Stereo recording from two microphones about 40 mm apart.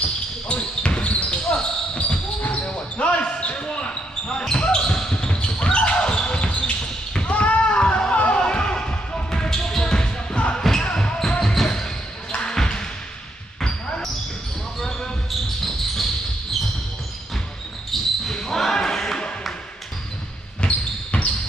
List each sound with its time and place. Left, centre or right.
0.5 s basketball bounce: left
2.0 s basketball bounce: left
7.2 s a sound: left; by 10.1 s centre
10.5 s basketball bounce: centre
10.8 s basketball bounce: left; by 16.1 s centre
17.9 s basketball bounce: centre
20.6 s basketball bounce: left